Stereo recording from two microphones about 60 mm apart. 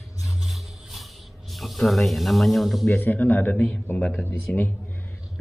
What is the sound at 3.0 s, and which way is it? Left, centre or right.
A man's voice, left.